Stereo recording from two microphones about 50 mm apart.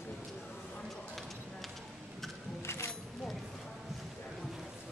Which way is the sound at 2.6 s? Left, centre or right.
Left.